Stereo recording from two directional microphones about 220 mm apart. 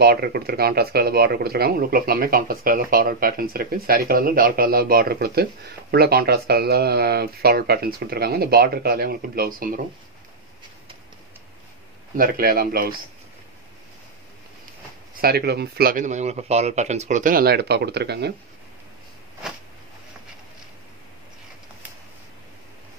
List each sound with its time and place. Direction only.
0.0 s speech: 45° right (ahead or behind)
12.2 s speech: 40° right (ahead or behind)
15.1 s a man's voice: 45° right (ahead or behind)